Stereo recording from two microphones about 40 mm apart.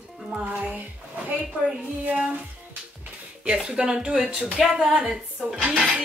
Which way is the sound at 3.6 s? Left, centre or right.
Right.